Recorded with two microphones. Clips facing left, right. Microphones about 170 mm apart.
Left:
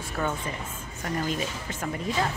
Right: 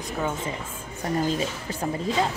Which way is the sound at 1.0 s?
30° right (ahead or behind).